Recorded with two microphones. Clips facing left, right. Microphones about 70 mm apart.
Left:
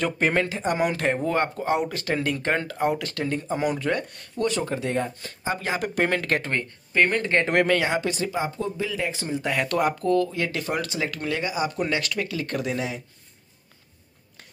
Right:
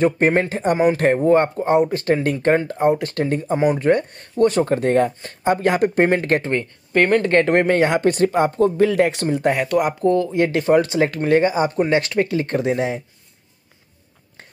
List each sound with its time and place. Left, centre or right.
0.3 s speech: right
6.0 s speech: right
6.9 s speech: right
7.5 s speech: right
7.9 s speech: right
9.6 s speech: centre
10.0 s speech: right